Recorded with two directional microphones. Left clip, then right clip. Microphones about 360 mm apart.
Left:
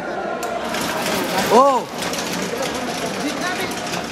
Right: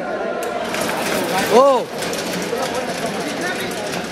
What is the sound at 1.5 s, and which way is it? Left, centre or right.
Speech, centre.